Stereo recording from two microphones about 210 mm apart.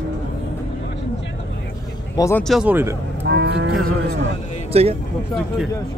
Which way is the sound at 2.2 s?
10° left (ahead or behind).